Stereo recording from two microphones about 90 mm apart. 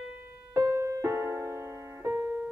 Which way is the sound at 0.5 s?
30° right (ahead or behind).